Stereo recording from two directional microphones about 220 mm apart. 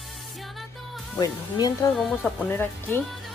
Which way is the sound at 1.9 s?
5° left (ahead or behind).